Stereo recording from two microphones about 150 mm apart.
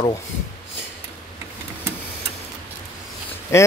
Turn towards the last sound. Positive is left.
turn(degrees=20)  # may be behind; listen again after turning